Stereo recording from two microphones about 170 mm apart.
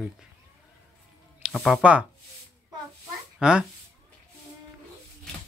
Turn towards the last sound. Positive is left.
turn(degrees=-5)  # may be behind; listen again after turning